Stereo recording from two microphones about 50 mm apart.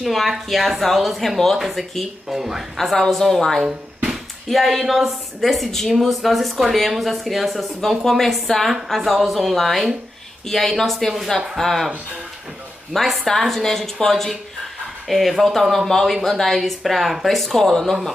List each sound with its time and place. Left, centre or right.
0.0 s speech: centre
2.8 s speech: centre
3.6 s bouncing: right
4.5 s speech: centre
12.9 s speech: centre